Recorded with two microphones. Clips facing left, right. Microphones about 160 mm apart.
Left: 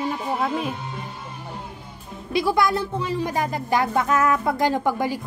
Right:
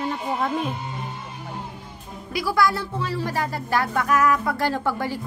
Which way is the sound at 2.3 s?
20° left (ahead or behind).